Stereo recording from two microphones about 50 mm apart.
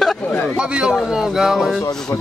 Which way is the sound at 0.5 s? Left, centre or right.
Centre.